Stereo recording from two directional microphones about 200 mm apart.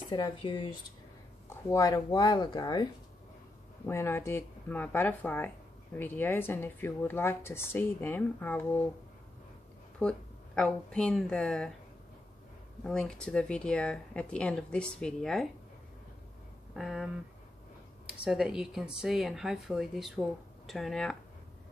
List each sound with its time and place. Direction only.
0.1 s speech: 20° left (ahead or behind)
9.9 s a woman's voice: 5° left (ahead or behind)
12.8 s speech: 5° left (ahead or behind)
16.7 s speech: centre (ahead or behind)